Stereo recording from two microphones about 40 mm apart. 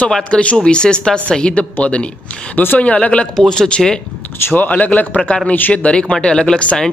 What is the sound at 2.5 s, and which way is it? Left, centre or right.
Speech, left.